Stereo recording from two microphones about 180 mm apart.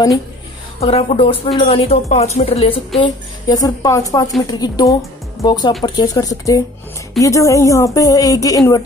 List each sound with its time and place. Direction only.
0.7 s speech: 35° left (ahead or behind)
3.0 s speech: 20° left (ahead or behind)